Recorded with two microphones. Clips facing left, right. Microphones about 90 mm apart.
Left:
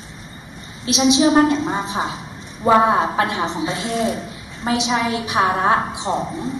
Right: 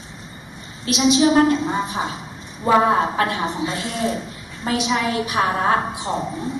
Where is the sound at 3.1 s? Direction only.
20° left (ahead or behind).